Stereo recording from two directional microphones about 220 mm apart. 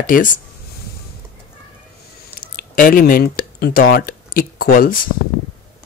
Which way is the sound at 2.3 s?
40° left (ahead or behind).